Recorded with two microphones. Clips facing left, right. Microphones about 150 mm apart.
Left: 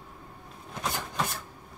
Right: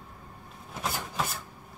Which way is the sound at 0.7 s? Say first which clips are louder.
Even; 5° right (ahead or behind).